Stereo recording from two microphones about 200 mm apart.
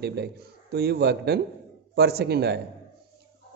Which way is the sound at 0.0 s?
55° right (ahead or behind).